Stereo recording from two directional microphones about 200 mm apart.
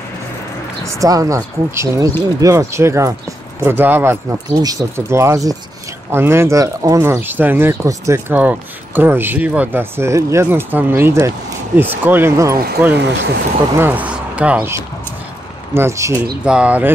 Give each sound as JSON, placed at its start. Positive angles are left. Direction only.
{"t": 0.9, "sound": "speech", "side_deg": -15}
{"t": 12.9, "sound": "speech", "side_deg": -60}
{"t": 13.7, "sound": "speech", "side_deg": -10}